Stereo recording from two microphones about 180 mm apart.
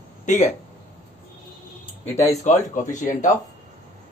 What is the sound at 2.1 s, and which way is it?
Speech, 15° left (ahead or behind).